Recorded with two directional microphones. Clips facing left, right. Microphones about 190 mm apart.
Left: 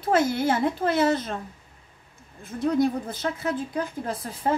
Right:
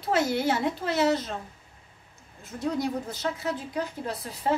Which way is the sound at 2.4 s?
55° left (ahead or behind).